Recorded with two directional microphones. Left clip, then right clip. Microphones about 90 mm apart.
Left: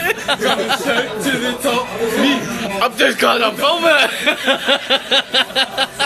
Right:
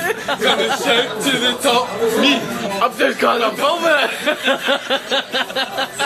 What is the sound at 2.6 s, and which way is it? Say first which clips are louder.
A man's voice: left 3 dB; 20° left (ahead or behind).